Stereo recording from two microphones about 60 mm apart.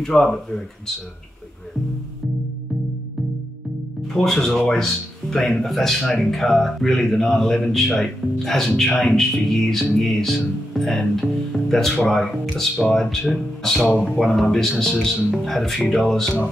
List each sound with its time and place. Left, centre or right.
0.0 s speech: centre
4.1 s speech: centre
13.8 s speech: centre
14.2 s speech: centre